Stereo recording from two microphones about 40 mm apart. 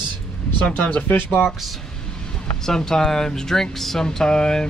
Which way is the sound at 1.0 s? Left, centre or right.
Left.